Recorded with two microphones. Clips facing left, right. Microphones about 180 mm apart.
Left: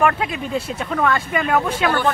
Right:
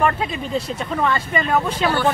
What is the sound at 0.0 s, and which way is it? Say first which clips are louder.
Speech: left 1 dB; 5° left (ahead or behind).